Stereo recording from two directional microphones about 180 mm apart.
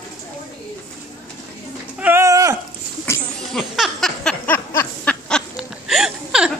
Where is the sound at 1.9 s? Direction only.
10° right (ahead or behind).